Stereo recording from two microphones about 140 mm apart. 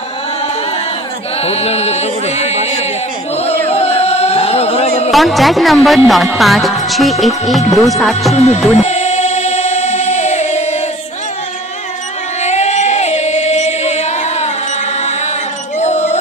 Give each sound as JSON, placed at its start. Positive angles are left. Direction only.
{"t": 1.4, "sound": "chant", "side_deg": 50}
{"t": 3.6, "sound": "singing", "side_deg": 45}
{"t": 5.1, "sound": "speech", "side_deg": 0}
{"t": 8.7, "sound": "choir", "side_deg": 55}
{"t": 12.4, "sound": "chant", "side_deg": 55}
{"t": 15.8, "sound": "music", "side_deg": 55}